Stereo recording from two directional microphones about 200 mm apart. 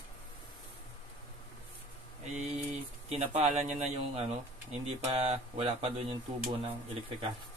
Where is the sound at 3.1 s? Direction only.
35° right (ahead or behind).